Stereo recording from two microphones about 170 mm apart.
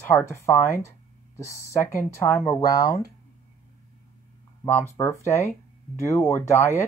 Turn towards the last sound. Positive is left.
turn(degrees=15)  # may be behind; listen again after turning